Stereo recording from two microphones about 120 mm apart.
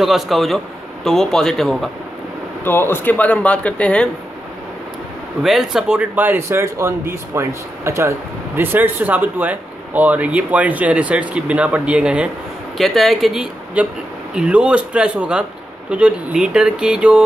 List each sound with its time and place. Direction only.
0.0 s speech: centre (ahead or behind)
2.6 s speech: 20° left (ahead or behind)
5.4 s speech: 5° right (ahead or behind)